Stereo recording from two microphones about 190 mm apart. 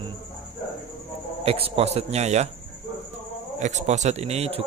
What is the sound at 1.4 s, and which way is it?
A man's voice, 30° right (ahead or behind).